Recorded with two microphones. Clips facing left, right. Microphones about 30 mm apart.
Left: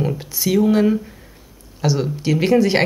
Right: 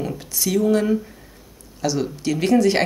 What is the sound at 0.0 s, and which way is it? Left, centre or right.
Speech, centre.